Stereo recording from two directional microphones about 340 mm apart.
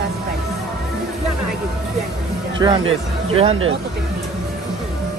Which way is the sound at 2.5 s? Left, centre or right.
Centre.